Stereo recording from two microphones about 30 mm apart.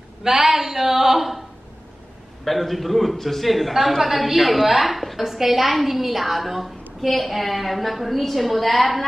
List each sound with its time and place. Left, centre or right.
0.2 s a woman's voice: centre
2.4 s a man's voice: centre